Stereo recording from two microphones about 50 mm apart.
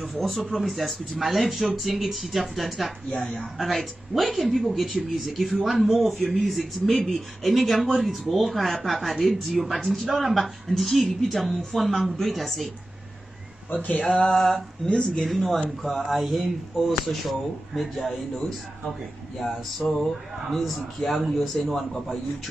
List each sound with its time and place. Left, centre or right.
0.2 s speech: centre
3.1 s speech: left
3.3 s speech: centre
13.7 s speech: left
14.0 s speech: centre
19.8 s a sound: centre
20.4 s speech: centre